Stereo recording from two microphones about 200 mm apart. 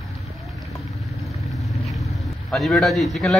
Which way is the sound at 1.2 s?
Centre (ahead or behind).